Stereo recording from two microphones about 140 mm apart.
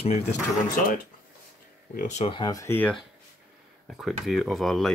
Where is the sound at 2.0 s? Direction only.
55° left (ahead or behind).